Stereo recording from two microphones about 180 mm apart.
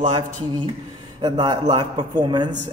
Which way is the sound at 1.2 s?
25° right (ahead or behind).